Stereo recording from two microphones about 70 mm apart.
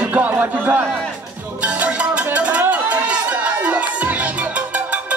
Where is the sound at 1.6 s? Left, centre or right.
Right.